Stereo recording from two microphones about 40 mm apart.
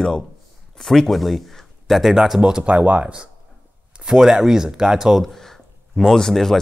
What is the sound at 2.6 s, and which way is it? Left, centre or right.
Speech, right.